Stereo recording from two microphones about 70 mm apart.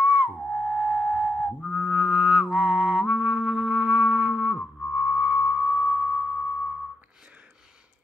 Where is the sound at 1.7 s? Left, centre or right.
Centre.